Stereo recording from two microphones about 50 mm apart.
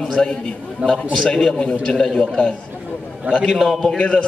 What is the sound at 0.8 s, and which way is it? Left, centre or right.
Speech, right.